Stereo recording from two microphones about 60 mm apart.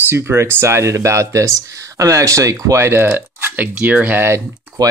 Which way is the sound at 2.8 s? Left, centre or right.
Right.